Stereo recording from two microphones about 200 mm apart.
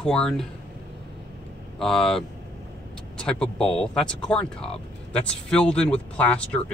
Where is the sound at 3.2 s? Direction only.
5° left (ahead or behind).